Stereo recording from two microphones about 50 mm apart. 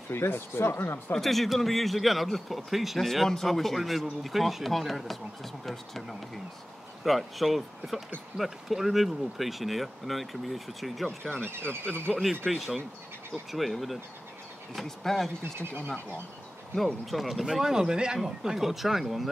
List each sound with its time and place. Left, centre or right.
0.1 s speech: left
1.1 s speech: centre
11.4 s speech: right
12.4 s speech: centre
16.7 s speech: centre